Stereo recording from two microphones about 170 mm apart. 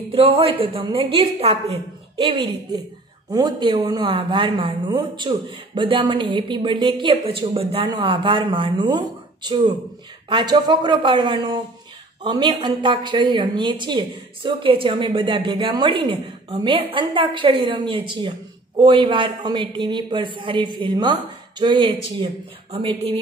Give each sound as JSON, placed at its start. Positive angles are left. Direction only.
{"t": 0.1, "sound": "a woman's voice", "side_deg": -35}